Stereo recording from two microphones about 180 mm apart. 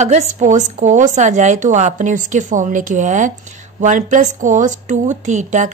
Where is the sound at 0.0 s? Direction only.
40° right (ahead or behind).